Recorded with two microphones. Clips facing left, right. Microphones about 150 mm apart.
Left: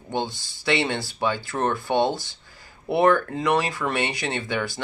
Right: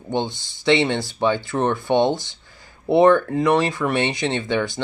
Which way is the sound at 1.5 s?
15° right (ahead or behind).